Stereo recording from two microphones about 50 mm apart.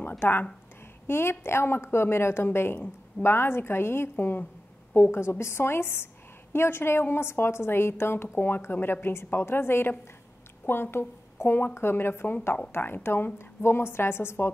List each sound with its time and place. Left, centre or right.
0.2 s a woman's voice: left
1.0 s a woman's voice: left